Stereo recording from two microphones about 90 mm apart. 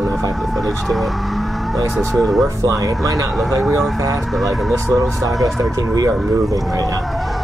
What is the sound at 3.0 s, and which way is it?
Speech, 40° right (ahead or behind).